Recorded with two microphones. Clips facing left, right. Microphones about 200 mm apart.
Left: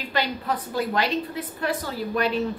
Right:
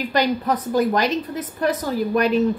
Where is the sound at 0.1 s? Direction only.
40° right (ahead or behind).